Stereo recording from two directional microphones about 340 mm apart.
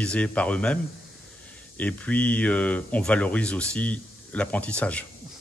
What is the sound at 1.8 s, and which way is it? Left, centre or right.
A man's voice, centre.